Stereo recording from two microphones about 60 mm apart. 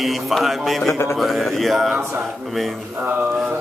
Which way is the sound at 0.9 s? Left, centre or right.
Left.